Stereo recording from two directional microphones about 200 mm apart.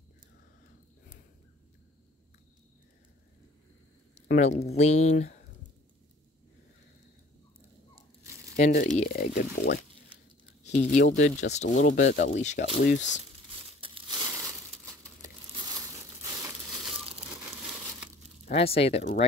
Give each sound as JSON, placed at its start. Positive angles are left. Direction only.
{"t": 4.3, "sound": "speech", "side_deg": 35}
{"t": 8.5, "sound": "speech", "side_deg": 40}
{"t": 10.6, "sound": "speech", "side_deg": 35}
{"t": 13.2, "sound": "crumpling", "side_deg": -25}
{"t": 15.5, "sound": "crumpling", "side_deg": -20}
{"t": 18.4, "sound": "speech", "side_deg": 30}